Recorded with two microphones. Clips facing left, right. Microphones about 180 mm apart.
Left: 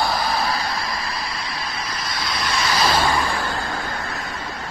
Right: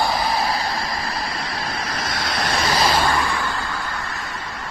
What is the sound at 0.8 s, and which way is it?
Vehicle, 45° right (ahead or behind).